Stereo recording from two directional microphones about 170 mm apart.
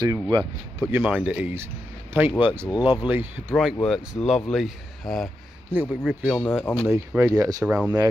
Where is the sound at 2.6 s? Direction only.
25° left (ahead or behind).